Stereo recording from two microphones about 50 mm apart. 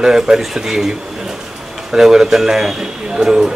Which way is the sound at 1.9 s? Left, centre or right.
Centre.